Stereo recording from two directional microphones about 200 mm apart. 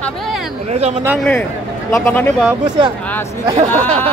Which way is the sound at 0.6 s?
30° right (ahead or behind).